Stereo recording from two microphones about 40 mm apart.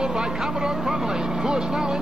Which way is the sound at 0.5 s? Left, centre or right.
Centre.